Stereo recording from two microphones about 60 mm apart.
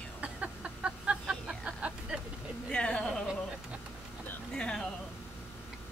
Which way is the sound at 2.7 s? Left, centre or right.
Centre.